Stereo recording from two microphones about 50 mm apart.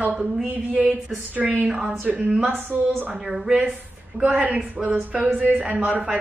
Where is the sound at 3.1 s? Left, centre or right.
Centre.